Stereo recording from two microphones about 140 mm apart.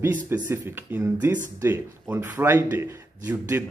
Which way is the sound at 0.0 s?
15° right (ahead or behind).